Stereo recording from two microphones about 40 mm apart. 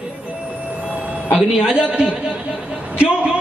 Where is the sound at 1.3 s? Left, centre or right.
Right.